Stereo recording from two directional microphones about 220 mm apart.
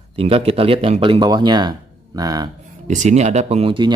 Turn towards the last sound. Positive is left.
turn(degrees=-20)  # may be behind; listen again after turning